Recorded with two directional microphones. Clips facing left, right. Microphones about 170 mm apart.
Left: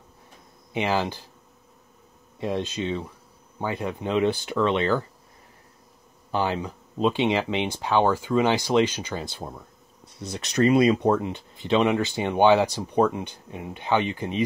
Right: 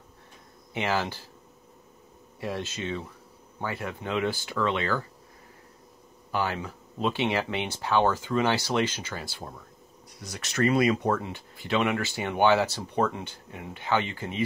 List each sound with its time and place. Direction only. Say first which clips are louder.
0.7 s speech: left 3 dB; 15° left (ahead or behind)
2.4 s speech: left 5 dB; 15° left (ahead or behind)
6.3 s speech: left 4 dB; 20° left (ahead or behind)